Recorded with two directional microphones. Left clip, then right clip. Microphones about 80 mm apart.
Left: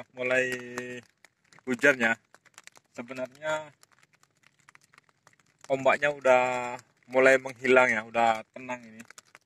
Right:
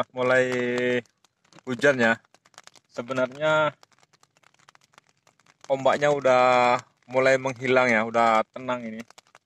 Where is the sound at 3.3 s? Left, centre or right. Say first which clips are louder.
Right 11 dB; right.